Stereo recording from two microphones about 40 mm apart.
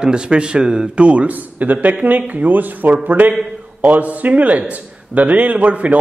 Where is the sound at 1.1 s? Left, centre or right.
Right.